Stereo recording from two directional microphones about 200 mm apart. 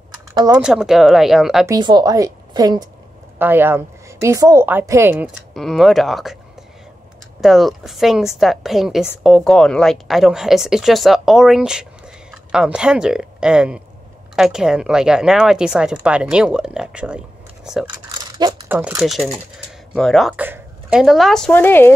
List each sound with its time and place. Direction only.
0.3 s typing: 20° right (ahead or behind)
0.6 s speech: 5° right (ahead or behind)
1.7 s a woman's voice: 20° right (ahead or behind)
5.5 s speech: centre (ahead or behind)
7.4 s speech: centre (ahead or behind)
18.4 s mechanisms: 10° right (ahead or behind)
19.0 s speech: centre (ahead or behind)